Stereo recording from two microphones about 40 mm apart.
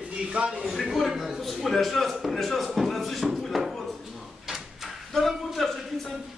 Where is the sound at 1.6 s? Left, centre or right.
Centre.